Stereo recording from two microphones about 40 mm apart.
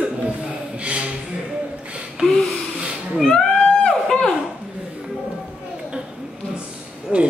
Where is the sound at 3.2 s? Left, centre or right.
Centre.